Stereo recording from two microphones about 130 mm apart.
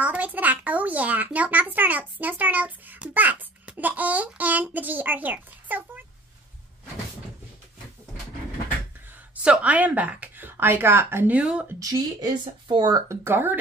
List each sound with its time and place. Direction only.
0.0 s a child's voice: 10° right (ahead or behind)
9.3 s speech: 10° right (ahead or behind)
11.8 s speech: 30° right (ahead or behind)
13.1 s speech: 20° right (ahead or behind)